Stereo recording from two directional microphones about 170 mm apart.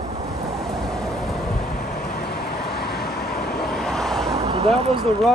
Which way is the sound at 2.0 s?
70° left (ahead or behind).